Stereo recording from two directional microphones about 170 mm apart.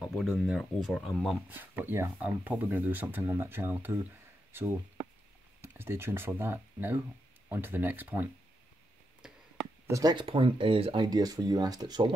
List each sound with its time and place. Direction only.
0.0 s speech: centre (ahead or behind)
1.5 s speech: 10° right (ahead or behind)
5.8 s speech: 15° right (ahead or behind)
9.2 s a sound: 5° right (ahead or behind)
9.8 s speech: 20° right (ahead or behind)